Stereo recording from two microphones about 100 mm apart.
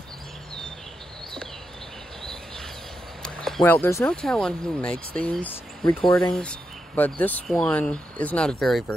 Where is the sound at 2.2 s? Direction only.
5° left (ahead or behind).